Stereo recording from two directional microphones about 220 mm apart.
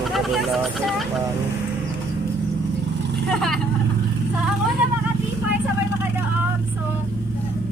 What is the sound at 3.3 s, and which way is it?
Speech, centre (ahead or behind).